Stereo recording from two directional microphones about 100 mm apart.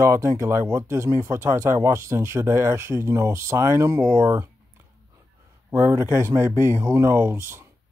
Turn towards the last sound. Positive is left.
turn(degrees=-25)  # may be behind; listen again after turning